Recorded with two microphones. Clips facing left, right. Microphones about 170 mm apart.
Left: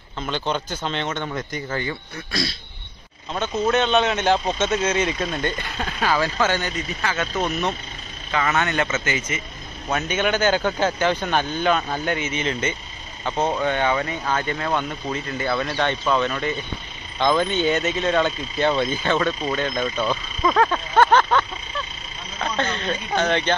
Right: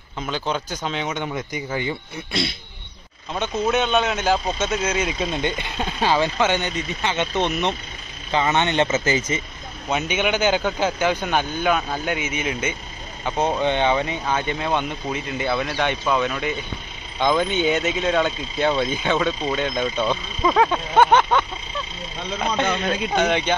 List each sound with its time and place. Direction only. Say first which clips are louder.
0.3 s speech: even; 5° right (ahead or behind)
3.6 s speech: left 1 dB; 5° right (ahead or behind)
5.3 s speech: right 1 dB; 20° right (ahead or behind)
9.8 s speech: even; 15° right (ahead or behind)
23.1 s speech: even; 10° right (ahead or behind)